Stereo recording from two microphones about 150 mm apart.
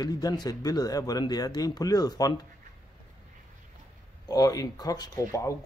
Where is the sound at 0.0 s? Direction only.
25° left (ahead or behind).